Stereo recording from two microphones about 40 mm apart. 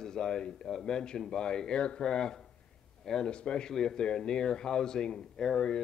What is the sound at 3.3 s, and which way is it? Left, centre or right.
Speech, left.